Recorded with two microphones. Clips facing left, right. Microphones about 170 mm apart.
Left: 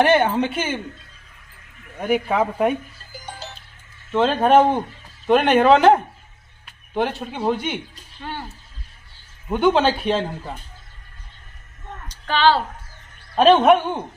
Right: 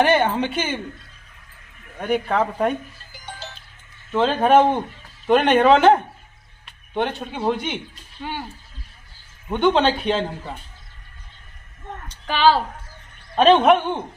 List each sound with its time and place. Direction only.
0.0 s speech: 5° left (ahead or behind)
2.0 s speech: 5° left (ahead or behind)
4.1 s speech: centre (ahead or behind)
8.2 s speech: 15° right (ahead or behind)
9.5 s speech: 5° left (ahead or behind)
12.3 s speech: 10° right (ahead or behind)
13.4 s speech: centre (ahead or behind)